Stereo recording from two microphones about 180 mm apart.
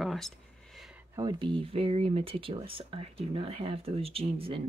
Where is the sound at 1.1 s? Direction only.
25° right (ahead or behind).